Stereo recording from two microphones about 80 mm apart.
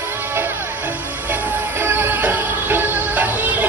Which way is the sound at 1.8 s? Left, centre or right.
Right.